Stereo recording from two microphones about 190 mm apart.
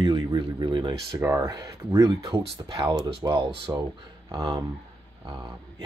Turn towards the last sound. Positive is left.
turn(degrees=-25)  # may be behind; listen again after turning